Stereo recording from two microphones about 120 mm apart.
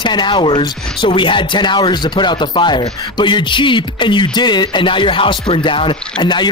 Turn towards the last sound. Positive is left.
turn(degrees=35)  # may be behind; listen again after turning